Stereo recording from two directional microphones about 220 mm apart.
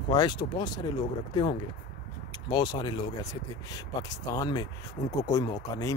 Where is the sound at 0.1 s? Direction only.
20° left (ahead or behind).